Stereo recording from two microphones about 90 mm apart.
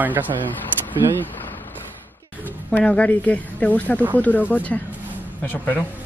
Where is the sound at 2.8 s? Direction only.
15° left (ahead or behind).